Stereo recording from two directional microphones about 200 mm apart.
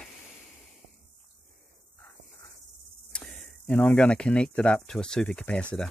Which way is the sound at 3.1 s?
5° left (ahead or behind).